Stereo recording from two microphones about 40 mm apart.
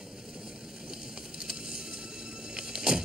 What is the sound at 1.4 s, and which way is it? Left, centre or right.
Vehicle, centre.